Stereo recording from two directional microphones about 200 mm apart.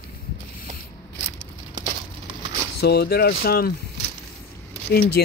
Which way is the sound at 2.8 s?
55° left (ahead or behind).